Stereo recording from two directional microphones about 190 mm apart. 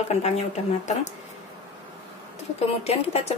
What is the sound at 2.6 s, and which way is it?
Speech, 35° left (ahead or behind).